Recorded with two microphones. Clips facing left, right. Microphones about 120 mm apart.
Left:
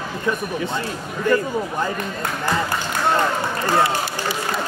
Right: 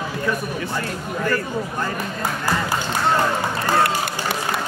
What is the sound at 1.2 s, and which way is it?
Speech, 20° left (ahead or behind).